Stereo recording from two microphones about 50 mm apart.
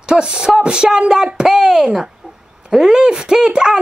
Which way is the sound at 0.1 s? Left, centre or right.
Centre.